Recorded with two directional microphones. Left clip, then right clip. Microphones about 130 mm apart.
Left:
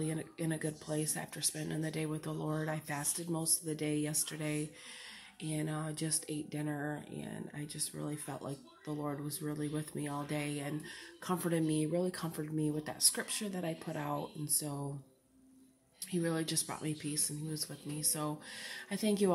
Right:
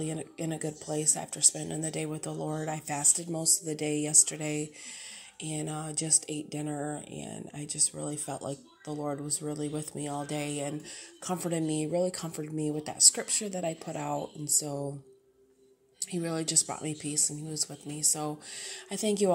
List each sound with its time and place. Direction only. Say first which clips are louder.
0.0 s speech: right 3 dB; 25° right (ahead or behind)
16.0 s speech: right 2 dB; 25° right (ahead or behind)